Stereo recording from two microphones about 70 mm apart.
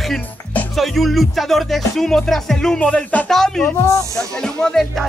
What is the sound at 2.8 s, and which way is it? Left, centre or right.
Speech, centre.